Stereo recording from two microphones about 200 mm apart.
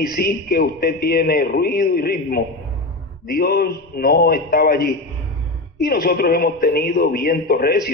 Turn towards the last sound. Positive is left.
turn(degrees=50)  # may be behind; listen again after turning